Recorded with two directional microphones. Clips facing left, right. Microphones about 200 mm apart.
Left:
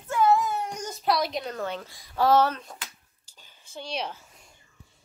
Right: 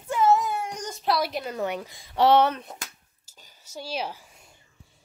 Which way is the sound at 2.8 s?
45° right (ahead or behind).